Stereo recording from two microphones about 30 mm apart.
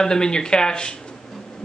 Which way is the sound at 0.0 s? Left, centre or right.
Left.